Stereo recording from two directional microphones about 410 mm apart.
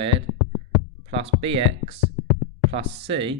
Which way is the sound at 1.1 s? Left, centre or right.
Centre.